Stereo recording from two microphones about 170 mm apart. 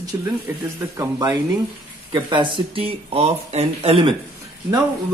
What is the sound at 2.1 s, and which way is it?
Speech, 30° right (ahead or behind).